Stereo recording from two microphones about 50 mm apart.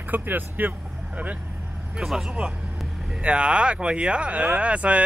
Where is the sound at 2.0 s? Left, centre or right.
Centre.